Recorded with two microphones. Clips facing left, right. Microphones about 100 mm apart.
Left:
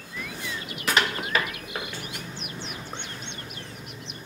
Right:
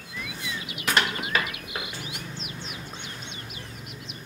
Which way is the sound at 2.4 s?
70° left (ahead or behind).